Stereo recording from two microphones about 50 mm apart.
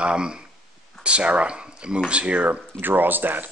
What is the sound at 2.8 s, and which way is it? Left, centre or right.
Speech, right.